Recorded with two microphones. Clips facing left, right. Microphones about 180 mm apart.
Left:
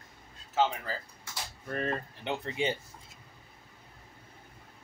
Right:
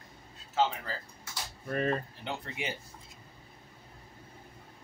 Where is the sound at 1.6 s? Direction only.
10° right (ahead or behind).